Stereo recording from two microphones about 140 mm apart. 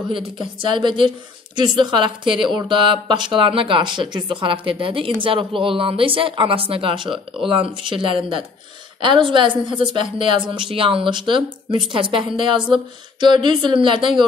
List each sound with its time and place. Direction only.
0.1 s speech: 35° right (ahead or behind)